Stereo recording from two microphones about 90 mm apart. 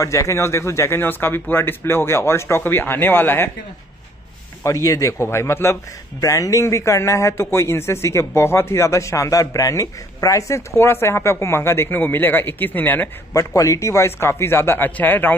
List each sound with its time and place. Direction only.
0.0 s a man's voice: 35° left (ahead or behind)
4.6 s a man's voice: 35° left (ahead or behind); by 13.1 s 20° left (ahead or behind)
13.3 s a man's voice: 40° left (ahead or behind); by 15.3 s 20° left (ahead or behind)